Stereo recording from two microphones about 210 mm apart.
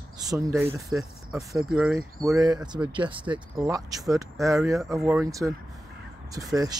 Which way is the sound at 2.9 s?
25° right (ahead or behind).